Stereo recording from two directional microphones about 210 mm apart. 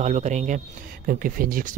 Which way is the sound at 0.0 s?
35° right (ahead or behind).